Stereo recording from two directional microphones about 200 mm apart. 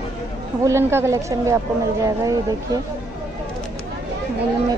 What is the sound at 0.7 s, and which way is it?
Speech, 10° right (ahead or behind).